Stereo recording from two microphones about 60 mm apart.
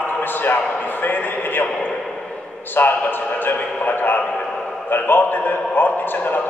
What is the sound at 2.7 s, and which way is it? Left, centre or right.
A man's voice, left.